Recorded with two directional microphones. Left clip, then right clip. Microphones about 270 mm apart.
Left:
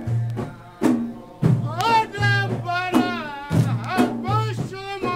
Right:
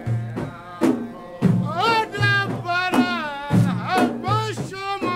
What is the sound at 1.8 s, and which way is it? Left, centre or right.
Music, centre.